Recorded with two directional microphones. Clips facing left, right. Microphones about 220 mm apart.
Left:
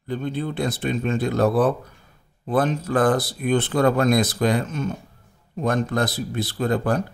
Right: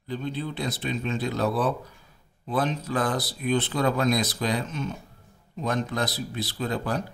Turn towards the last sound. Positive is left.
turn(degrees=50)  # may be behind; listen again after turning